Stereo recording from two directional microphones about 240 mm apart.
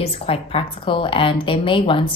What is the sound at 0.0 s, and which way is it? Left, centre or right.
Speech, left.